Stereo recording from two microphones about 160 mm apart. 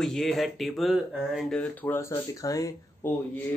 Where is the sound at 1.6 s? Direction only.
15° left (ahead or behind).